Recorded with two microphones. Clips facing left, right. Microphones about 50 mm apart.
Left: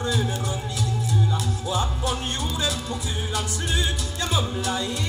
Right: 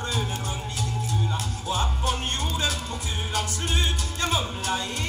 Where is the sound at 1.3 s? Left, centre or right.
Right.